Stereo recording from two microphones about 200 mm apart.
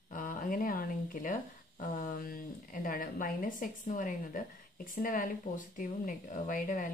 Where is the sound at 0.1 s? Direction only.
40° left (ahead or behind).